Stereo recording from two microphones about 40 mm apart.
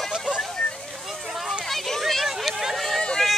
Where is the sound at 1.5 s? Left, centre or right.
Centre.